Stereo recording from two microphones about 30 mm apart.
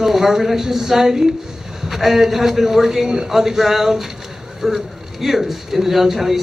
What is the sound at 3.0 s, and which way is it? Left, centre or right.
Speech, right.